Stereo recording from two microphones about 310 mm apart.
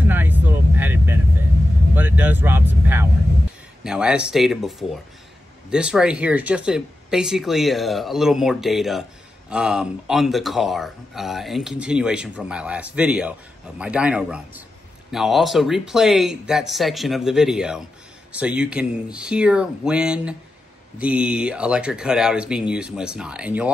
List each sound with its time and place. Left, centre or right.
0.1 s vehicle: centre
2.0 s speech: centre